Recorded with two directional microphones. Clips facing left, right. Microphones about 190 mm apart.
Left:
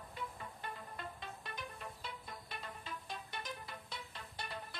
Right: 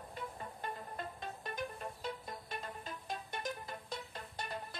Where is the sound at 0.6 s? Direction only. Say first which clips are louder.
Right 4 dB; 40° right (ahead or behind).